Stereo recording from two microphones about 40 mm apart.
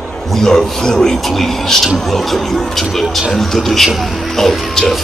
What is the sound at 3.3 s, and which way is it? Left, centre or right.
Speech, centre.